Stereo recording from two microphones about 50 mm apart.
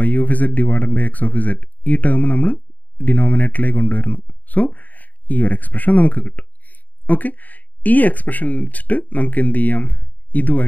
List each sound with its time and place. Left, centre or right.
0.0 s speech: left